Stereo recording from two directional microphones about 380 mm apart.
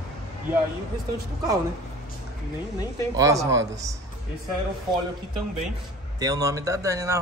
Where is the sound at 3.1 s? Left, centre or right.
Centre.